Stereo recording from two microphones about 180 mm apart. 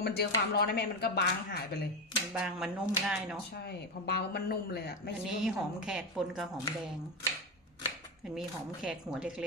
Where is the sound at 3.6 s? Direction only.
65° left (ahead or behind).